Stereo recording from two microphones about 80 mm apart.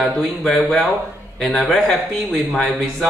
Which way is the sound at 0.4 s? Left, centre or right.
Centre.